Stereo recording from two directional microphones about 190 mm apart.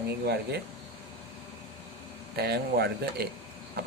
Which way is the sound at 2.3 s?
60° right (ahead or behind).